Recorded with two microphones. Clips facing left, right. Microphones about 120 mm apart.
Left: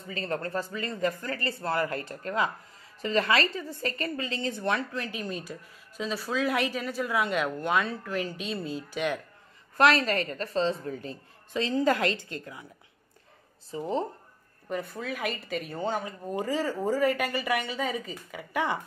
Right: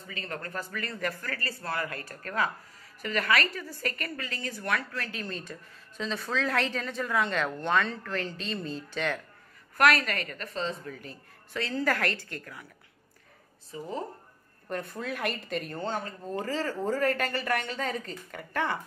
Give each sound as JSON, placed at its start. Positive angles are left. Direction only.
{"t": 0.0, "sound": "a woman's voice", "side_deg": 35}
{"t": 9.8, "sound": "a woman's voice", "side_deg": 30}
{"t": 13.7, "sound": "a woman's voice", "side_deg": 30}
{"t": 14.7, "sound": "a woman's voice", "side_deg": 0}